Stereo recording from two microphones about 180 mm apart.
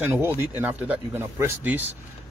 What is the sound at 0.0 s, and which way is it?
Speech, 10° right (ahead or behind).